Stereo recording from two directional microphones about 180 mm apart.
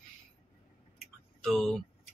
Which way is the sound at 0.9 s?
5° left (ahead or behind).